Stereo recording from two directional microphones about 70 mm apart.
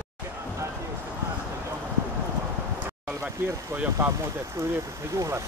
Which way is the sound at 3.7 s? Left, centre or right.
Right.